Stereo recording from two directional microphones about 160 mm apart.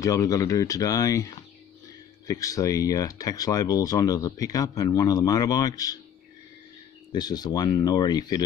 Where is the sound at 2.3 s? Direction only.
20° left (ahead or behind).